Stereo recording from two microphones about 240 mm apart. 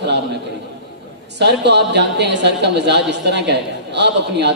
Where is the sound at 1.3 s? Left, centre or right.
Right.